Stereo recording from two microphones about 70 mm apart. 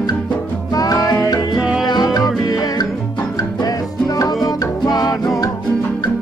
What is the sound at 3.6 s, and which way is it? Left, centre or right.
Music, left.